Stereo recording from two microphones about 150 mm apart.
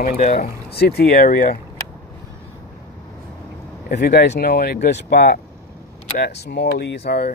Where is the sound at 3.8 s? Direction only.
80° left.